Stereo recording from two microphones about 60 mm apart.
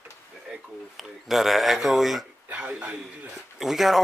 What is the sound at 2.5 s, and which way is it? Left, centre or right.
Speech, right.